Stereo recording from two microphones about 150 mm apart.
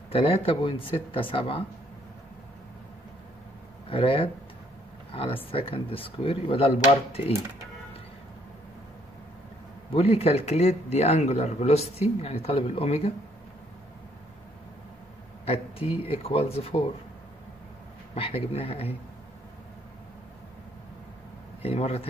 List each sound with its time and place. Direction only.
0.1 s speech: 35° left (ahead or behind)
3.9 s speech: 35° left (ahead or behind)
9.9 s speech: 40° left (ahead or behind)
15.4 s speech: 40° left (ahead or behind)
18.1 s speech: 40° left (ahead or behind)
21.6 s speech: 40° left (ahead or behind)